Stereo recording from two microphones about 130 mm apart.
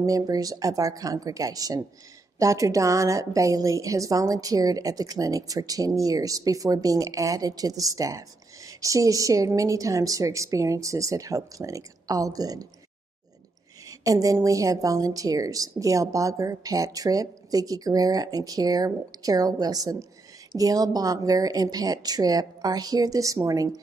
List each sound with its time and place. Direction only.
0.0 s a woman's voice: 30° right (ahead or behind)
13.8 s a woman's voice: 25° right (ahead or behind)